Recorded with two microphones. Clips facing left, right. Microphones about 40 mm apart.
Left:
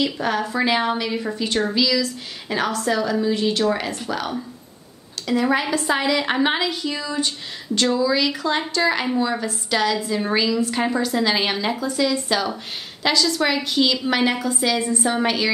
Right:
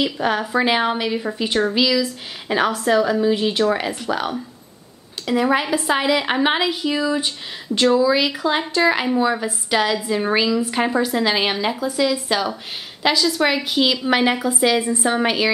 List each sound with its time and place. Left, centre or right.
0.0 s speech: centre